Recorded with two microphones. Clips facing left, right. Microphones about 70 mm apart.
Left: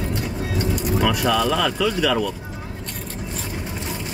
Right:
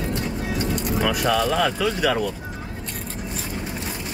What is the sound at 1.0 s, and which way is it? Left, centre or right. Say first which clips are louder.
Speech: left 1 dB; centre.